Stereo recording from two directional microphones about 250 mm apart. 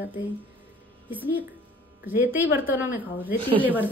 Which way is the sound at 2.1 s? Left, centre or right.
Centre.